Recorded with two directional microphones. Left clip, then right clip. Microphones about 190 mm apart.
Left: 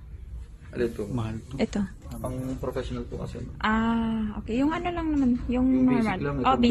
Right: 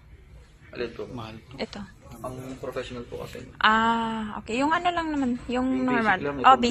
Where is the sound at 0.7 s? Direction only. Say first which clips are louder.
Left 4 dB; 55° left (ahead or behind).